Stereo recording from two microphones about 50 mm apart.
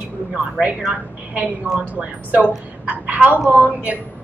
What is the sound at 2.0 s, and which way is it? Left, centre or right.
A woman's voice, right.